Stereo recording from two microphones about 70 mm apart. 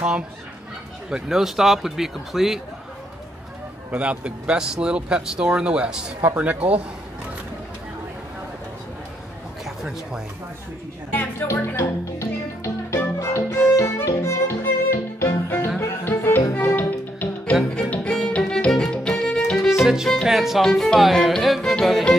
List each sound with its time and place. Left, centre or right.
1.1 s speech: centre
3.9 s speech: centre
6.2 s speech: right
11.1 s a woman's voice: left
11.8 s music: left; by 19.7 s centre
19.8 s music: centre
20.2 s speech: centre